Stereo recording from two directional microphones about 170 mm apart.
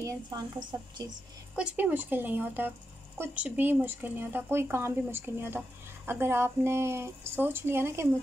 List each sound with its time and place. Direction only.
0.0 s a woman's voice: 25° right (ahead or behind)
1.5 s speech: 5° right (ahead or behind)